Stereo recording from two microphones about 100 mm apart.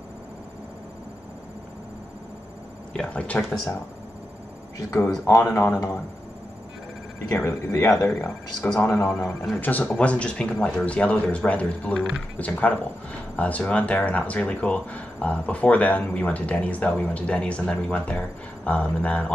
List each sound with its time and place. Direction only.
3.0 s speech: 10° left (ahead or behind)
5.2 s speech: 30° left (ahead or behind)
7.3 s speech: 25° left (ahead or behind)
8.1 s speech: 5° left (ahead or behind)
8.8 s speech: 30° left (ahead or behind)
9.1 s speech: centre (ahead or behind)
9.6 s speech: 20° left (ahead or behind)